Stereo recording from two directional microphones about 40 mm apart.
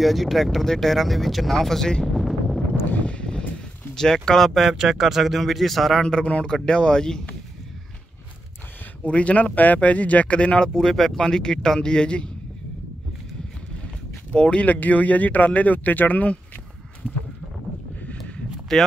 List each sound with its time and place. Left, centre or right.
0.0 s speech: centre
2.1 s a sound: centre
3.0 s a sound: left
3.9 s speech: centre
4.6 s speech: centre
6.0 s a man's voice: left
9.0 s speech: left
10.7 s speech: centre
14.3 s a man's voice: left
14.7 s speech: left
17.0 s a sound: left
18.7 s speech: centre